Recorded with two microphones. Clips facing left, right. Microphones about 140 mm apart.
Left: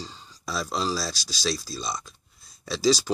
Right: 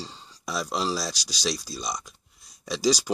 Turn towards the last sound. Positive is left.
turn(degrees=-15)  # may be behind; listen again after turning